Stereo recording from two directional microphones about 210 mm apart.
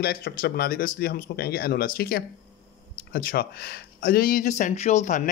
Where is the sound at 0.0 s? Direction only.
45° left (ahead or behind).